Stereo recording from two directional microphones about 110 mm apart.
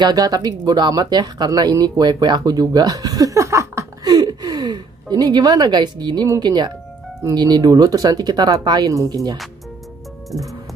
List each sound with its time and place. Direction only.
0.0 s speech: 35° right (ahead or behind)